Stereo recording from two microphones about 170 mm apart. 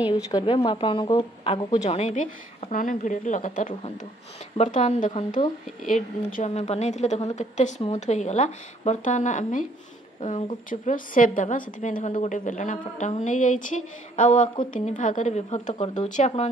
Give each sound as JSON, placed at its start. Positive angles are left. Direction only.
{"t": 0.1, "sound": "a woman's voice", "side_deg": 25}
{"t": 2.7, "sound": "a woman's voice", "side_deg": 50}